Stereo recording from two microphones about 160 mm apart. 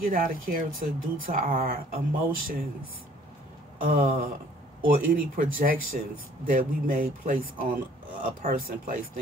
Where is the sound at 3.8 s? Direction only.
60° right (ahead or behind).